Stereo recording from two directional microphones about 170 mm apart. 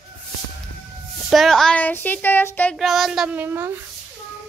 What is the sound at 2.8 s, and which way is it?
A child's voice, centre (ahead or behind).